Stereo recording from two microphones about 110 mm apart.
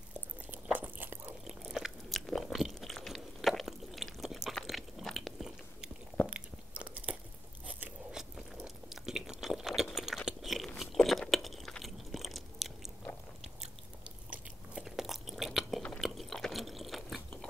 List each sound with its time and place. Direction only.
0.1 s biting: 15° right (ahead or behind)
1.6 s biting: centre (ahead or behind)
6.2 s chewing: 10° right (ahead or behind)
7.6 s biting: 10° right (ahead or behind)
8.6 s chewing: 5° right (ahead or behind)
10.8 s biting: centre (ahead or behind)
14.3 s biting: 10° right (ahead or behind)
16.0 s chewing: centre (ahead or behind)